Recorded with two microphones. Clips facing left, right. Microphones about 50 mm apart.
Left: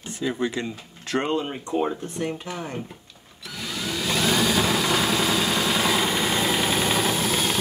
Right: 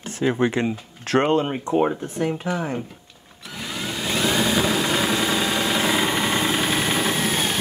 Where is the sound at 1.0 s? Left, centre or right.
Right.